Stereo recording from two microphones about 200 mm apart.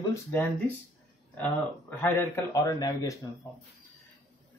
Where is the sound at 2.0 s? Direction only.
10° left (ahead or behind).